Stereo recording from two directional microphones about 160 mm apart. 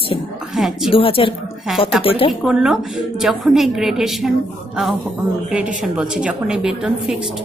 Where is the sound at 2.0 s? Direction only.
35° left (ahead or behind).